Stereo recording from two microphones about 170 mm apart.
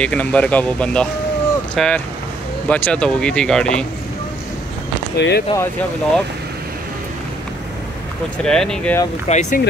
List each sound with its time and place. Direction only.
0.0 s speech: 5° left (ahead or behind)
5.1 s speech: 75° left (ahead or behind)
5.6 s speech: 10° left (ahead or behind)
8.5 s speech: 5° left (ahead or behind)
9.3 s speech: 45° left (ahead or behind)